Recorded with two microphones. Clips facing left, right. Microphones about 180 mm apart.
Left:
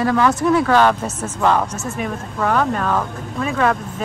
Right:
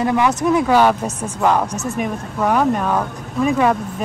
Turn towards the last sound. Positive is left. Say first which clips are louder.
# right 2 dB
turn(degrees=-5)  # may be behind; listen again after turning